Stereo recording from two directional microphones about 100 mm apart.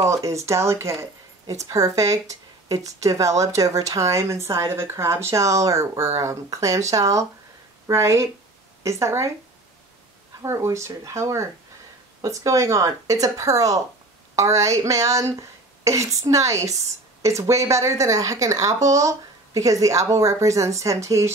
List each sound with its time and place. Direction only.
0.1 s speech: 30° right (ahead or behind)
10.4 s speech: 25° right (ahead or behind)